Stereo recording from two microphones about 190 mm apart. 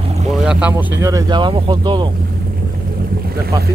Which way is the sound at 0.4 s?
5° right (ahead or behind).